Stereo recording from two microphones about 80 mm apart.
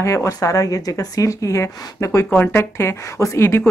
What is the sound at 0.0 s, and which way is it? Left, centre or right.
Speech, left.